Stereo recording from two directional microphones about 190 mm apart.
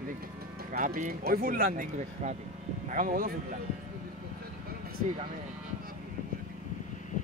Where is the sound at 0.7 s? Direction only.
45° right (ahead or behind).